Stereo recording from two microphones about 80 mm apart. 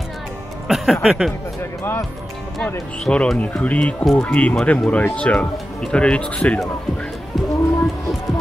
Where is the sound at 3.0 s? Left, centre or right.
Centre.